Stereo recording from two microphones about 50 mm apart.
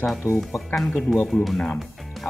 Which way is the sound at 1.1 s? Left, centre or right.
Centre.